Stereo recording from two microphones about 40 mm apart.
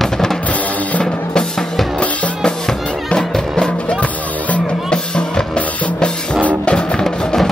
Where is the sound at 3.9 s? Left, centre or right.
Left.